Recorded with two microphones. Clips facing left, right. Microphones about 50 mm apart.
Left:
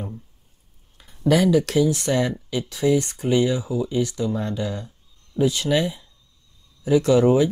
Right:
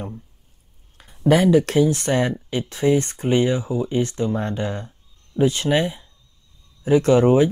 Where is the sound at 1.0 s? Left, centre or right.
Right.